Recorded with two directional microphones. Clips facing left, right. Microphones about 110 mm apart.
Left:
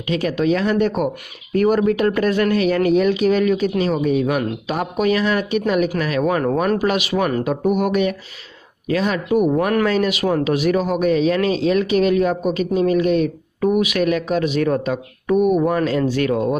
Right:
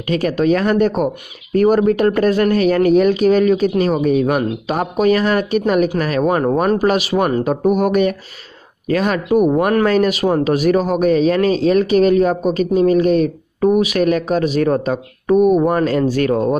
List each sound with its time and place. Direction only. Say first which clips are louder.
0.0 s speech: right 3 dB; 45° right (ahead or behind)